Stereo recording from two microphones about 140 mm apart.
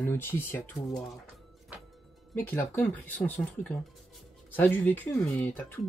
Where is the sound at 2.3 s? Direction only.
15° left (ahead or behind).